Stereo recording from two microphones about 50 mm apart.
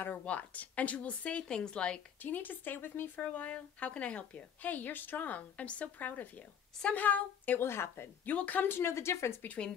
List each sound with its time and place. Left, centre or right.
0.2 s speech: left
2.2 s a woman's voice: left
3.2 s a woman's voice: left
7.6 s speech: left
8.3 s a woman's voice: left
8.6 s speech: left